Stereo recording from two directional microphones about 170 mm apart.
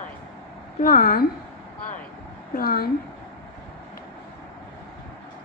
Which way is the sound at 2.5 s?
60° left (ahead or behind).